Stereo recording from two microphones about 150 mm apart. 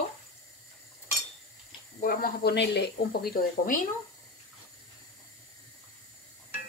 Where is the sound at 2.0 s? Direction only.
75° left (ahead or behind).